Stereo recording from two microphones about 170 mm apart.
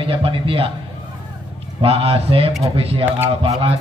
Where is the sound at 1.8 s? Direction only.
35° right (ahead or behind).